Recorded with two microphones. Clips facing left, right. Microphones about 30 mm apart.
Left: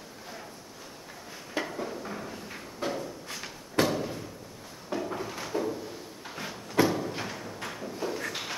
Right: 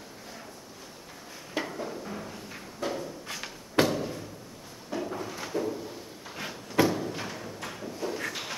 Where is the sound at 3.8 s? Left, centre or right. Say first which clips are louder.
Even; centre.